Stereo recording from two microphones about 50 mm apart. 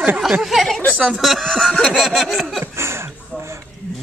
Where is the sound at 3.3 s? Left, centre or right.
Centre.